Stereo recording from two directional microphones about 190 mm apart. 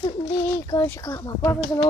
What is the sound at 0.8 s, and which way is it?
Speech, 15° left (ahead or behind).